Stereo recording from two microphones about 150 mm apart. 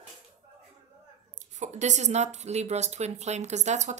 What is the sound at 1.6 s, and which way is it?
Speech, 50° right (ahead or behind).